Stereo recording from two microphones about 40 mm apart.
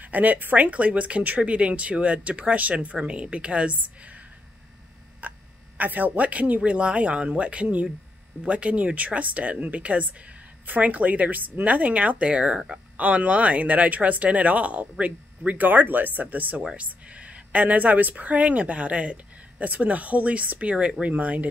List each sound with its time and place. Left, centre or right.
0.0 s speech: right
3.0 s speech: right
5.2 s a sound: right
5.8 s speech: right
12.5 s speech: centre
12.9 s speech: right